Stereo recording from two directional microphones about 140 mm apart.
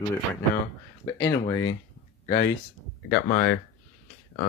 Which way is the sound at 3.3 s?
90° left.